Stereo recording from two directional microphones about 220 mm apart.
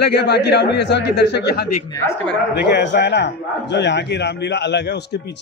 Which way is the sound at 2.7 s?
50° left (ahead or behind).